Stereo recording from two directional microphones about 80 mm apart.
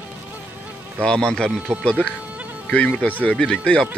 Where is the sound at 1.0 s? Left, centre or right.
Centre.